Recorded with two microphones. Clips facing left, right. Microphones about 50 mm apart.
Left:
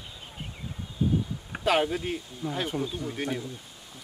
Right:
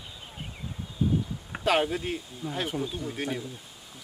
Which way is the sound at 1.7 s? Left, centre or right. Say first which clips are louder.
Even; centre.